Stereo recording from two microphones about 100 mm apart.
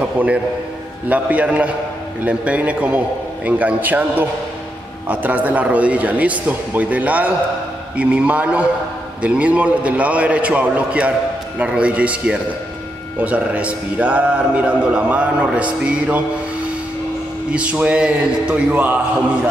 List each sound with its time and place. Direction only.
0.0 s a man's voice: 10° right (ahead or behind)
17.5 s a man's voice: 15° right (ahead or behind)